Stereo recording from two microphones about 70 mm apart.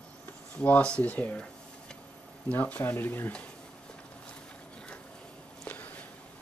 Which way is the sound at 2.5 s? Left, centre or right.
Left.